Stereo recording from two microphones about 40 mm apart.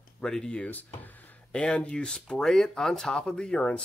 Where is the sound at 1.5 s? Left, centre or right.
Left.